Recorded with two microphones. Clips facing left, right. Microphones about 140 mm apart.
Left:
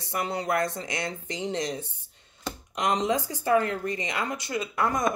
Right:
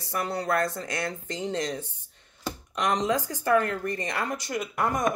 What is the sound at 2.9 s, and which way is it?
Speech, 20° left (ahead or behind).